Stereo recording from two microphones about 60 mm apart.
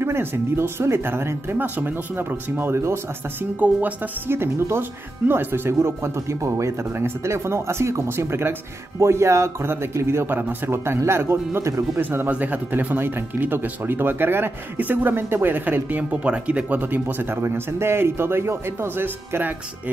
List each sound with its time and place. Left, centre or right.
0.0 s speech: right
3.5 s speech: right
17.4 s speech: right